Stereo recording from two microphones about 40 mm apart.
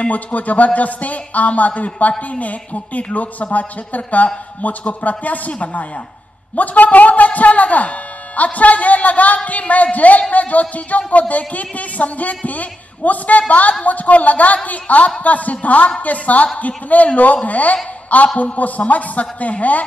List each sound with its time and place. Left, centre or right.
0.1 s a man's voice: left